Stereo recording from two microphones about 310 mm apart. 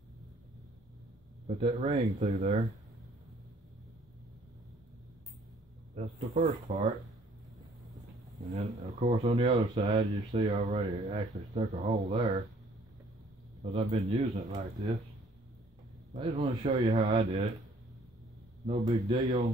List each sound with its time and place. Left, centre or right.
1.6 s speech: centre
5.9 s speech: right
9.0 s speech: centre
13.7 s speech: right
16.1 s speech: right
18.7 s speech: centre